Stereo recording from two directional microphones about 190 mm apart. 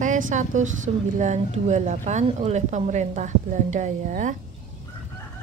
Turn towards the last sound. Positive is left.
turn(degrees=-40)  # may be behind; listen again after turning